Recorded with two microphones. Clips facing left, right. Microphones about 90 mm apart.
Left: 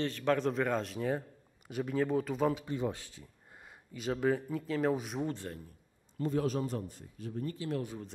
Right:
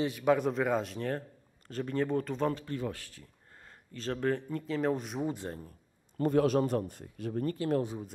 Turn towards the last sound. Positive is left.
turn(degrees=-55)  # may be behind; listen again after turning